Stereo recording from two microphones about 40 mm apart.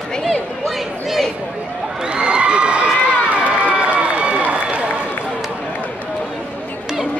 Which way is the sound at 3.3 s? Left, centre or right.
Right.